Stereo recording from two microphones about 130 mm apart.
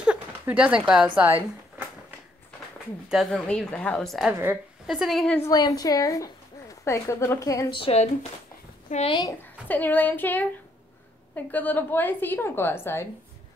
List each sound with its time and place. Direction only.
0.0 s a sound: 10° right (ahead or behind)
3.1 s a woman's voice: centre (ahead or behind)
4.3 s a woman's voice: 15° right (ahead or behind)
4.8 s a woman's voice: 5° right (ahead or behind)
5.4 s a woman's voice: 30° left (ahead or behind)
7.7 s speech: 50° left (ahead or behind)
8.9 s a woman's voice: 85° left
9.7 s a woman's voice: 15° left (ahead or behind)